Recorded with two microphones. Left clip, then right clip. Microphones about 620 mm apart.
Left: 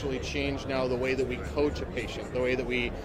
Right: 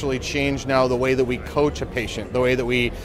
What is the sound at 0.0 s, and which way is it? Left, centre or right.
Speech, right.